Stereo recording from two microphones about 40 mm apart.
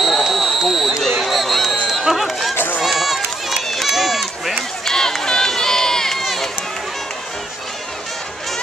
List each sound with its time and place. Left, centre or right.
0.0 s a sound: centre
2.8 s run: centre
4.8 s run: centre